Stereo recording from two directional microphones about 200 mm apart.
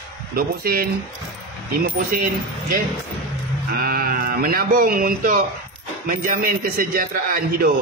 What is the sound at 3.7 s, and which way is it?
A man's voice, 50° right (ahead or behind).